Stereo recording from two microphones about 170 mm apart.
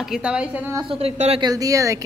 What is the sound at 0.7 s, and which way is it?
Speech, 30° right (ahead or behind).